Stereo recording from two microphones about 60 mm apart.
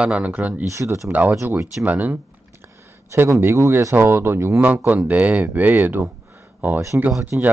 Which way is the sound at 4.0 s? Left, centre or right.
Right.